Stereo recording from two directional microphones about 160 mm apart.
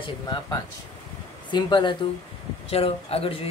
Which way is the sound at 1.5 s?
30° left (ahead or behind).